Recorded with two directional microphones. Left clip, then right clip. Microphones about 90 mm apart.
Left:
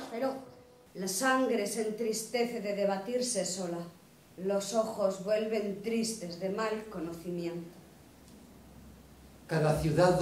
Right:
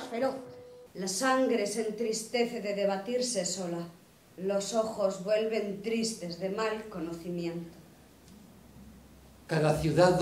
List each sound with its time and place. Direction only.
0.0 s a sound: 20° right (ahead or behind)
0.9 s speech: centre (ahead or behind)
9.5 s a woman's voice: 10° right (ahead or behind)